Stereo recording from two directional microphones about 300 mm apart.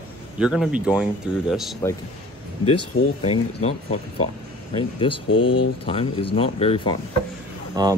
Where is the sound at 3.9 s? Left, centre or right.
Left.